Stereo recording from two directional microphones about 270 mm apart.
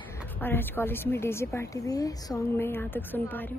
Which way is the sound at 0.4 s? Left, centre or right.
Centre.